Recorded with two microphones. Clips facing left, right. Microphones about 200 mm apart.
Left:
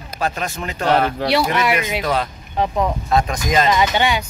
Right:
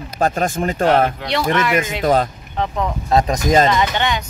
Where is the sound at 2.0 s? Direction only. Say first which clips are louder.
Right 5 dB; 45° right (ahead or behind).